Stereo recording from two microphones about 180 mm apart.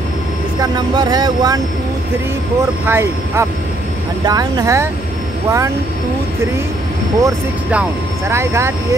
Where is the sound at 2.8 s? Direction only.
15° right (ahead or behind).